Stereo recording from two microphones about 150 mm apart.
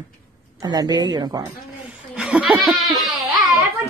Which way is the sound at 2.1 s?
5° right (ahead or behind).